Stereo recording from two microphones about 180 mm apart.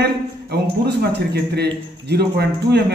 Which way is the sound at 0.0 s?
65° right (ahead or behind).